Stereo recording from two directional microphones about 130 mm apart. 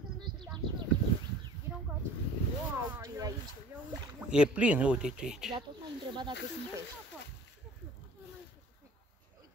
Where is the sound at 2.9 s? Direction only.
25° right (ahead or behind).